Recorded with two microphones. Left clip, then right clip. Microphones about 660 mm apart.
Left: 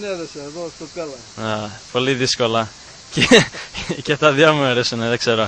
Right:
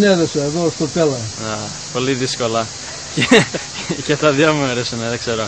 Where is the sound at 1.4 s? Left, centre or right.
Left.